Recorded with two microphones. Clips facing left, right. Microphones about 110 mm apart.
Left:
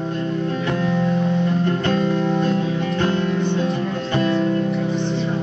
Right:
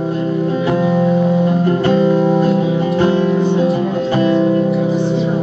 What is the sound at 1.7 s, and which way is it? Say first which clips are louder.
Music: right 7 dB; 10° right (ahead or behind).